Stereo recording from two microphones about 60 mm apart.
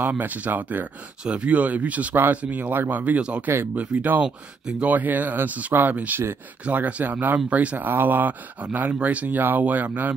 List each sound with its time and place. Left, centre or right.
0.0 s speech: right
4.2 s speech: centre
4.9 s speech: right